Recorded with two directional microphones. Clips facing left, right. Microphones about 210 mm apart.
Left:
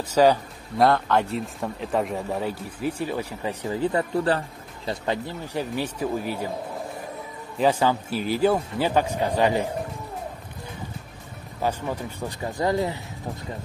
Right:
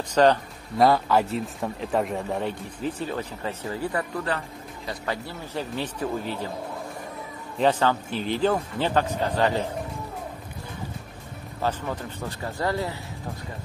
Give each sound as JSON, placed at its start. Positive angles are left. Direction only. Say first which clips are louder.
{"t": 0.1, "sound": "a man's voice", "louder": "left 1 dB", "side_deg": 5}
{"t": 7.5, "sound": "a man's voice", "louder": "left 1 dB", "side_deg": 10}
{"t": 11.6, "sound": "a man's voice", "louder": "left 1 dB", "side_deg": 10}